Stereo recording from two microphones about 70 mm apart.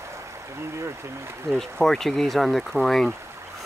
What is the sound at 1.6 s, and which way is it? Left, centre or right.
Speech, centre.